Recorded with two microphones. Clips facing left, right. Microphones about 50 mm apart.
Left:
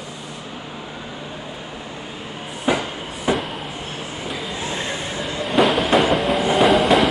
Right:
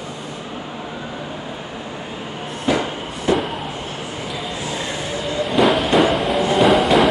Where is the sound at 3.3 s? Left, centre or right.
Centre.